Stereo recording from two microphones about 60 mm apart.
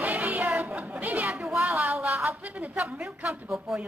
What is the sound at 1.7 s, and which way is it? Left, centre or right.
Speech, right.